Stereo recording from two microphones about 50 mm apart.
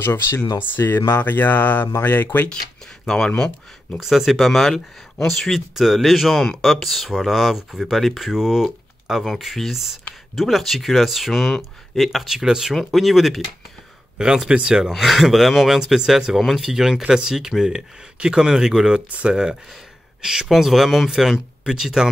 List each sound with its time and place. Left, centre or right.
0.0 s speech: left
3.1 s speech: centre
4.0 s speech: centre
14.9 s speech: centre